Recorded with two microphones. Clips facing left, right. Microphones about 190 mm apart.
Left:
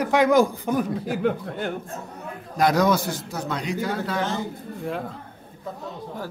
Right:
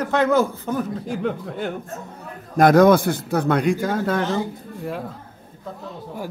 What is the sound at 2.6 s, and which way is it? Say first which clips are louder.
A man's voice: right 7 dB; 55° right (ahead or behind).